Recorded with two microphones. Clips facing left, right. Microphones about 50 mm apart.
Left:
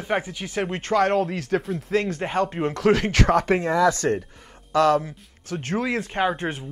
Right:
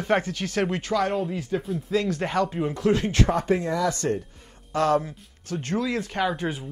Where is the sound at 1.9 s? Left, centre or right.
Left.